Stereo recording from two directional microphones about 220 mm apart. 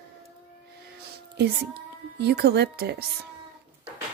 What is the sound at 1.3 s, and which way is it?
A woman's voice, 50° right (ahead or behind).